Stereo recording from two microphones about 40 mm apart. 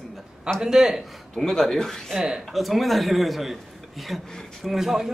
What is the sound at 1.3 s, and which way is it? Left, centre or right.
Speech, centre.